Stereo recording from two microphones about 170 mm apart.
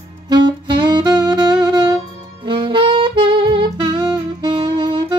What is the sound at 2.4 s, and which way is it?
Saxophone, 30° right (ahead or behind).